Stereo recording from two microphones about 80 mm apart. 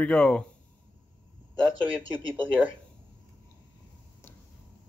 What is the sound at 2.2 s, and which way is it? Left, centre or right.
Speech, right.